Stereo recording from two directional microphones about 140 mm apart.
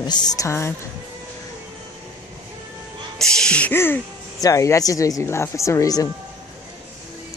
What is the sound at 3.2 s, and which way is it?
Speech, 5° left (ahead or behind).